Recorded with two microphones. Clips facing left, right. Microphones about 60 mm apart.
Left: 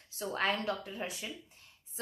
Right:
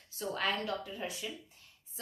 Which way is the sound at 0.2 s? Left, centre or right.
Left.